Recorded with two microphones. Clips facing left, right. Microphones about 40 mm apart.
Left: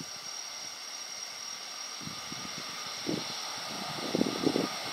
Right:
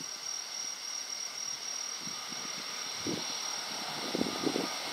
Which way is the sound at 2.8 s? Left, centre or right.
Centre.